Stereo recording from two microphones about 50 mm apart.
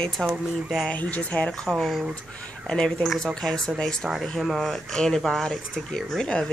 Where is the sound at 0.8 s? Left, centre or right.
Left.